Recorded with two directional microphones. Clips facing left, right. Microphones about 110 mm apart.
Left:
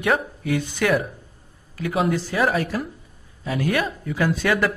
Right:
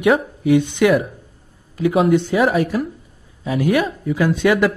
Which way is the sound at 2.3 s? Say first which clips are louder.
Right 5 dB; 15° right (ahead or behind).